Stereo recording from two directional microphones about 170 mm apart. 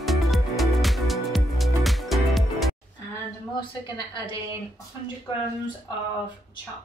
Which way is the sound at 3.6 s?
30° left (ahead or behind).